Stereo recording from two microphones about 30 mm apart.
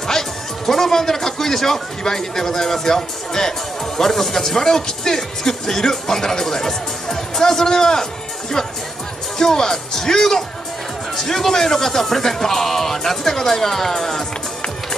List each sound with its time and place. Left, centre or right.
0.7 s speech: centre